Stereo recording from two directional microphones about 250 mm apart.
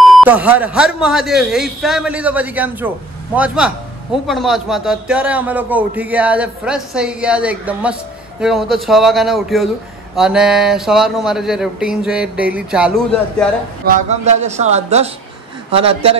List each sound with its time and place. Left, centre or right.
0.0 s a man's voice: centre
13.8 s speech: right